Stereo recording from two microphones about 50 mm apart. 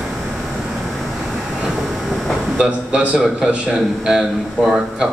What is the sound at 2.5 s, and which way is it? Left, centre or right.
A man's voice, right.